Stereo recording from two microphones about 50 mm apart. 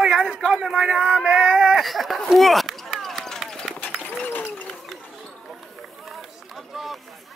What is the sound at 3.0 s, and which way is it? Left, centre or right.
Run, centre.